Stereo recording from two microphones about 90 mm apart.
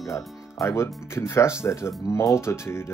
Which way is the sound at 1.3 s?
30° left (ahead or behind).